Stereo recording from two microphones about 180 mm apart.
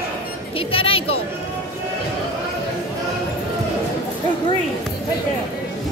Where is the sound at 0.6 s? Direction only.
30° left (ahead or behind).